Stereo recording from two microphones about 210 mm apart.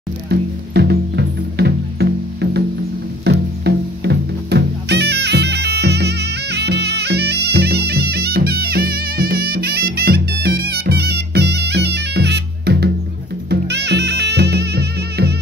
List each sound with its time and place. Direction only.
0.3 s music: 50° right (ahead or behind)